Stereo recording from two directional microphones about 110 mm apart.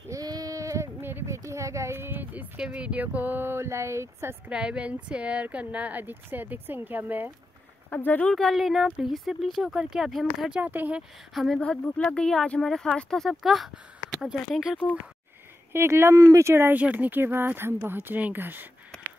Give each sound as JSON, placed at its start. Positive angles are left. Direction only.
{"t": 0.1, "sound": "speech", "side_deg": -35}
{"t": 4.5, "sound": "speech", "side_deg": -10}
{"t": 7.9, "sound": "a woman's voice", "side_deg": 15}
{"t": 8.3, "sound": "speech", "side_deg": 0}
{"t": 10.6, "sound": "speech", "side_deg": -15}
{"t": 11.0, "sound": "speech", "side_deg": 0}
{"t": 15.7, "sound": "speech", "side_deg": -25}